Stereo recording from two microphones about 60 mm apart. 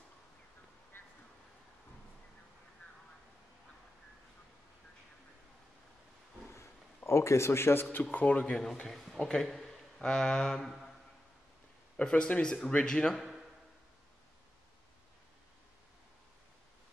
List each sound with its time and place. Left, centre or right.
7.1 s speech: left; by 8.5 s centre
8.5 s speech: centre
8.9 s a sound: centre
10.0 s speech: centre
12.0 s speech: centre